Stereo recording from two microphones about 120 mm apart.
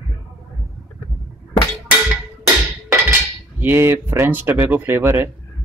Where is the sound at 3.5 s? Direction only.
20° right (ahead or behind).